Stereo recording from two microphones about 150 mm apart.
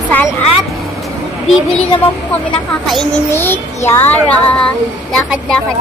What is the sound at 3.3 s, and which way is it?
Speech, 15° left (ahead or behind).